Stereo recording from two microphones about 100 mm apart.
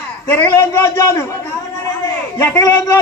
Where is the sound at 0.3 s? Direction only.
20° left (ahead or behind).